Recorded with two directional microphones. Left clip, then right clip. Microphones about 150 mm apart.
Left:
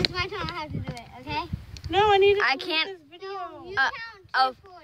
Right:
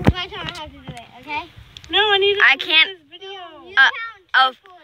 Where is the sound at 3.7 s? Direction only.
5° left (ahead or behind).